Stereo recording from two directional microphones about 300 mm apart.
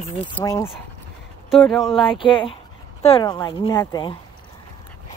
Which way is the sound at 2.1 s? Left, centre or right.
Centre.